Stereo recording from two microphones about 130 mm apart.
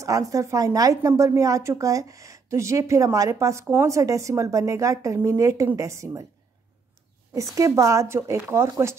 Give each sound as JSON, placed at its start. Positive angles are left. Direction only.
{"t": 0.0, "sound": "speech", "side_deg": -25}
{"t": 7.3, "sound": "speech", "side_deg": -25}